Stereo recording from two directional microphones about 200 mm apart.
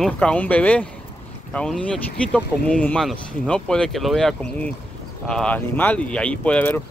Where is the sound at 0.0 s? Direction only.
5° left (ahead or behind).